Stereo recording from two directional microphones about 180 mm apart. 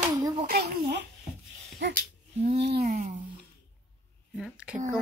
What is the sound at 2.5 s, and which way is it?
Speech, 65° right (ahead or behind).